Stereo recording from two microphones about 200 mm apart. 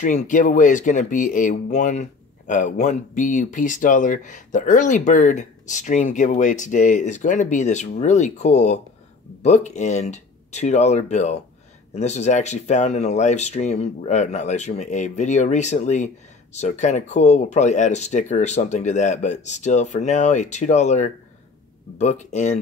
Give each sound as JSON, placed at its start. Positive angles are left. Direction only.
{"t": 0.0, "sound": "speech", "side_deg": 40}